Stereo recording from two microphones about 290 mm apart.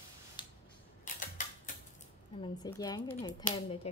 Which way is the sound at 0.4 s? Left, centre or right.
Centre.